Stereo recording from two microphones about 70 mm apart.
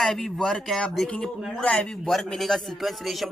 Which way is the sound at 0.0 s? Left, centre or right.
Centre.